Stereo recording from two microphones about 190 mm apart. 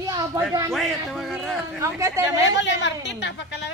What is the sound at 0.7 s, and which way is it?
Speech, centre (ahead or behind).